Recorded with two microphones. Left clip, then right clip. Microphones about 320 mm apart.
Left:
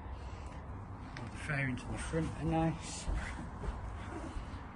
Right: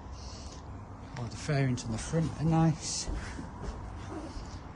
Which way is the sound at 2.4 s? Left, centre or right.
Right.